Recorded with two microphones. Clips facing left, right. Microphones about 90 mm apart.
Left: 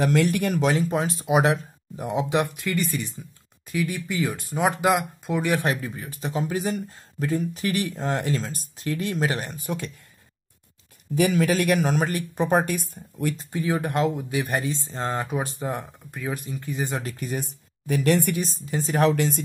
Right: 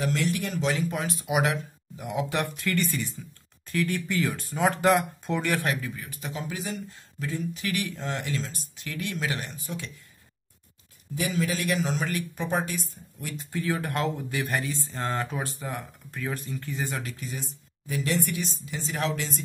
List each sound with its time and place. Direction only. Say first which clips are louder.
0.0 s speech: left 6 dB; 55° left (ahead or behind)
0.7 s speech: left 2 dB; 35° left (ahead or behind)
2.2 s speech: left 4 dB; 15° left (ahead or behind)
5.7 s speech: left 3 dB; 30° left (ahead or behind)
9.6 s speech: left 6 dB; 50° left (ahead or behind)
11.1 s speech: left 7 dB; 65° left (ahead or behind)
12.1 s speech: left 6 dB; 40° left (ahead or behind); by 13.3 s 55° left (ahead or behind)
13.5 s speech: even; 20° left (ahead or behind)
17.0 s speech: left 6 dB; 50° left (ahead or behind)
18.4 s speech: left 6 dB; 45° left (ahead or behind)